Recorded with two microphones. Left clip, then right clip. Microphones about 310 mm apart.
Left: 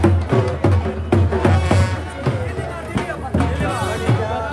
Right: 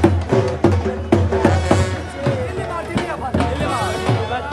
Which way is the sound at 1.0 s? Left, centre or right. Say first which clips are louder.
Right 2 dB; right.